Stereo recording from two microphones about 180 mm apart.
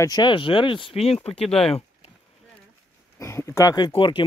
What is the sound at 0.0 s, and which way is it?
Speech, 20° left (ahead or behind).